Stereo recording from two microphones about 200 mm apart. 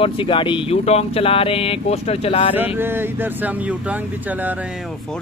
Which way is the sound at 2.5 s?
10° right (ahead or behind).